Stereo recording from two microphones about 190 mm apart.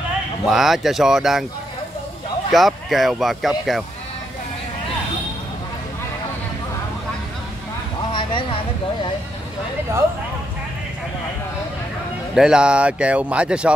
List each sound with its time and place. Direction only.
0.5 s speech: centre (ahead or behind)
2.5 s speech: centre (ahead or behind)
8.1 s a sound: 25° left (ahead or behind)
12.4 s speech: 5° right (ahead or behind)